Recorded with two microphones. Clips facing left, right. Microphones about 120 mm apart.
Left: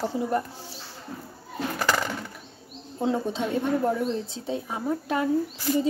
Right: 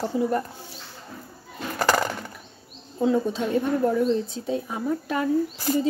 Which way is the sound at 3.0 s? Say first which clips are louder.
Right 3 dB; 30° left (ahead or behind).